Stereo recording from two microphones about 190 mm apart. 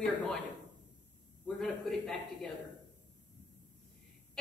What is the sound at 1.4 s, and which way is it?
Speech, 5° left (ahead or behind).